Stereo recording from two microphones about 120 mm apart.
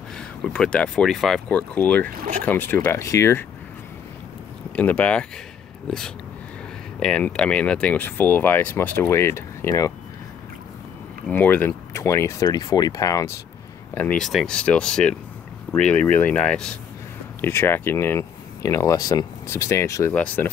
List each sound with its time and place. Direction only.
0.2 s speech: 5° left (ahead or behind)
1.5 s speech: 10° left (ahead or behind)
4.7 s speech: 10° left (ahead or behind); by 9.9 s 25° left (ahead or behind)
11.2 s speech: 15° left (ahead or behind)
13.9 s speech: 15° left (ahead or behind)
17.4 s speech: 20° left (ahead or behind)
20.2 s speech: 10° left (ahead or behind)